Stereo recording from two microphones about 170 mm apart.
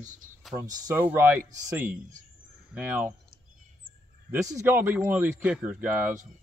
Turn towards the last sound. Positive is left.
turn(degrees=-10)  # may be behind; listen again after turning